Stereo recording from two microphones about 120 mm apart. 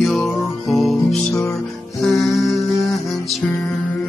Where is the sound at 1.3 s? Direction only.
25° left (ahead or behind).